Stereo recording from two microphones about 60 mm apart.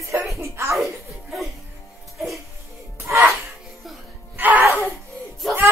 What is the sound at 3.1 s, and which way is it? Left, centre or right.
Music, right.